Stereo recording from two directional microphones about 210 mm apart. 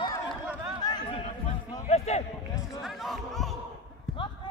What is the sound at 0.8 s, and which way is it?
Chatter, 20° left (ahead or behind).